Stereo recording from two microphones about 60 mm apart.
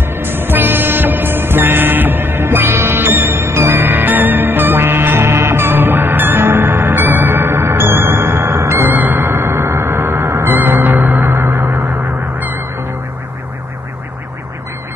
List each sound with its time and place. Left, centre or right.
0.0 s music: right
3.8 s music: right
10.5 s music: right